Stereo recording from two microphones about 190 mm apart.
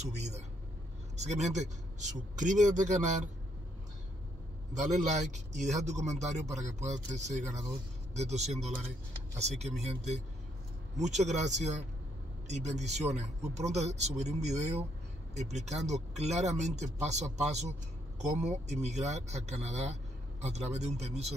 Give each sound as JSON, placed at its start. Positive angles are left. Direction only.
{"t": 1.1, "sound": "speech", "side_deg": -35}
{"t": 5.0, "sound": "speech", "side_deg": -40}